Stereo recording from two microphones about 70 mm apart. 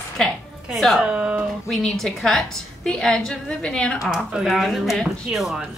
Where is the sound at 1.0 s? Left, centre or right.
Centre.